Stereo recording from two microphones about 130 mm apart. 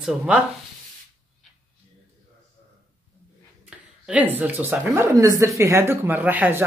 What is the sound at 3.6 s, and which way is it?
Speech, 10° right (ahead or behind).